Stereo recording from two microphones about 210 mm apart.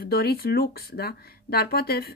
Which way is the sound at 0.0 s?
50° left (ahead or behind).